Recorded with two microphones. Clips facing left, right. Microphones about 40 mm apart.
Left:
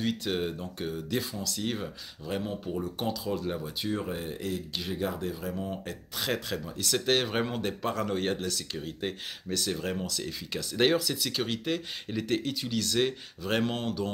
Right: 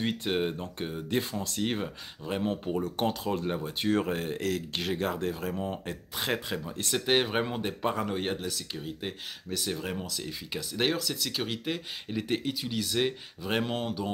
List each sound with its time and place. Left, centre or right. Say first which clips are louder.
0.0 s speech: right 1 dB; right
1.0 s speech: right 5 dB; right
1.6 s speech: right 3 dB; right
2.8 s speech: right 3 dB; right
4.4 s speech: right 3 dB; right
4.8 s speech: right 2 dB; right
5.6 s speech: right 1 dB; right